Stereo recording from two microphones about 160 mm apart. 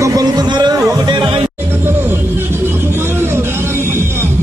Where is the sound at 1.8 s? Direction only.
15° right (ahead or behind).